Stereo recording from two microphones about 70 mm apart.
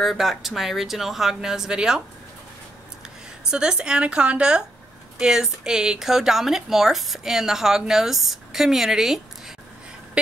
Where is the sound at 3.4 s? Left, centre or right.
Centre.